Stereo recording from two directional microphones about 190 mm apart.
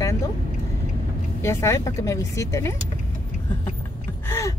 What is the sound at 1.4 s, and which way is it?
Speech, 15° left (ahead or behind).